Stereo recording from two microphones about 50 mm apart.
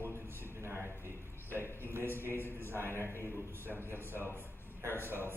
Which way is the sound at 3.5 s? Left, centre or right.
Right.